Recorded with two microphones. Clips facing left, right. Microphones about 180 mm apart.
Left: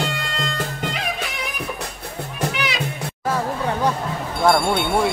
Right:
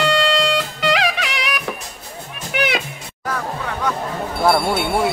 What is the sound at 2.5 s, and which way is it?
Music, 60° right (ahead or behind).